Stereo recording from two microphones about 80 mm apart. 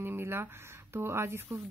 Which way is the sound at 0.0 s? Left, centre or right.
Right.